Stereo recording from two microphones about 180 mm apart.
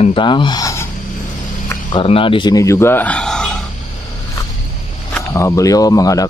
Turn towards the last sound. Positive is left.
turn(degrees=20)  # may be behind; listen again after turning